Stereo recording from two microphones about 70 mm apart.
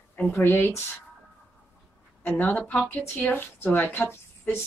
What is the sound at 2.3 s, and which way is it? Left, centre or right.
A woman's voice, left.